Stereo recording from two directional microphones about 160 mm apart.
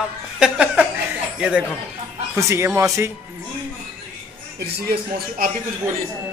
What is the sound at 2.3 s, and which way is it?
Speech, 20° right (ahead or behind).